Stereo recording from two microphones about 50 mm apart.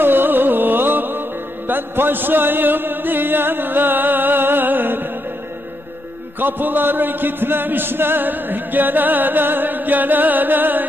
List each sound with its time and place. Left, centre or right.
0.0 s music: right
1.7 s chant: right
6.4 s music: right